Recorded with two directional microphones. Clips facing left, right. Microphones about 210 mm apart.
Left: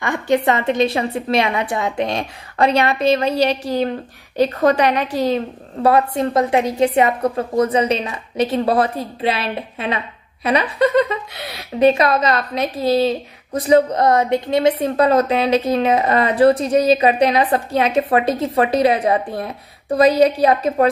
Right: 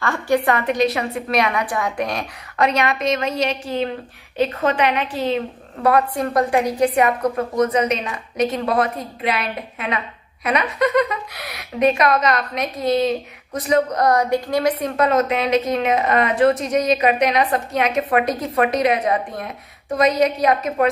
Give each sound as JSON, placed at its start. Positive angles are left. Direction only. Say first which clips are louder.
{"t": 0.0, "sound": "a woman's voice", "louder": "left 2 dB", "side_deg": 20}